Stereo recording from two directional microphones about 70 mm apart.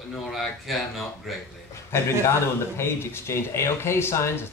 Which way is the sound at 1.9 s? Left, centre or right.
Left.